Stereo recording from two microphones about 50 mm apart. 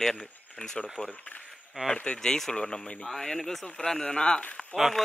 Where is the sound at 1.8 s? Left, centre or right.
Right.